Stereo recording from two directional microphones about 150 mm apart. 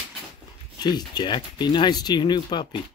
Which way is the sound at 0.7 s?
30° left (ahead or behind).